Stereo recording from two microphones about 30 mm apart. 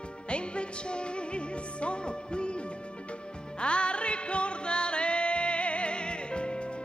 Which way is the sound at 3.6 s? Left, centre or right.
Left.